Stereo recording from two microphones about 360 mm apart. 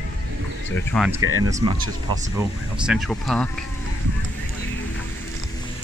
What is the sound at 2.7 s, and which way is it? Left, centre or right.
Speech, centre.